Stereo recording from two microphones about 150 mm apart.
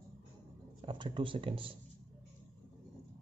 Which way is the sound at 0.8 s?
35° right (ahead or behind).